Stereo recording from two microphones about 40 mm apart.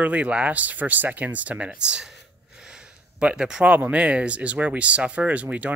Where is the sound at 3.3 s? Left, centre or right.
Centre.